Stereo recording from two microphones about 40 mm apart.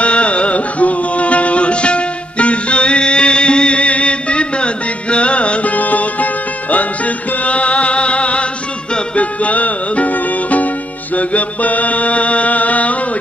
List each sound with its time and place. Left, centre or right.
0.0 s music: left
11.1 s chant: left